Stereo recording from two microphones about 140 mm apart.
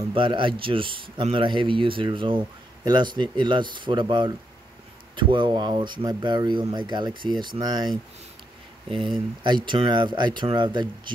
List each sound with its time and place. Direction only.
0.1 s a man's voice: 35° right (ahead or behind)
9.4 s a man's voice: 35° right (ahead or behind)